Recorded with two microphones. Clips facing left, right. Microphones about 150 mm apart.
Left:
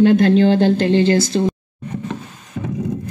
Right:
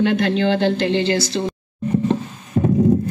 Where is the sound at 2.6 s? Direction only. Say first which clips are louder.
Right 8 dB; 40° right (ahead or behind).